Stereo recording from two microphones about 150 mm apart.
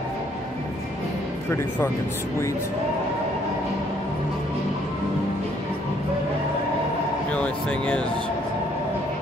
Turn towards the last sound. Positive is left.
turn(degrees=10)  # may be behind; listen again after turning